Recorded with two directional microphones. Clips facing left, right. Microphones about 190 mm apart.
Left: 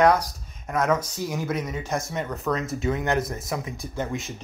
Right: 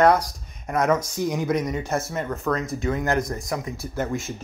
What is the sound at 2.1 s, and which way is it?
Speech, centre (ahead or behind).